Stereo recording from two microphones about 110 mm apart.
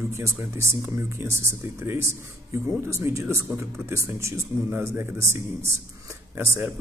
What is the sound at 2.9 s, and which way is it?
Speech, 25° right (ahead or behind).